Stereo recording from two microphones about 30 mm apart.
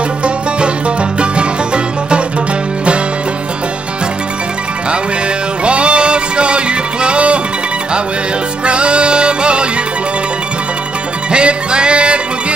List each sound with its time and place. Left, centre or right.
0.2 s music: right
5.6 s music: right
8.6 s music: right
11.3 s music: right